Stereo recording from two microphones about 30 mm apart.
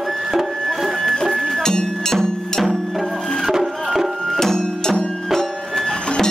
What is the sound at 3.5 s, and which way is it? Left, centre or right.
Music, centre.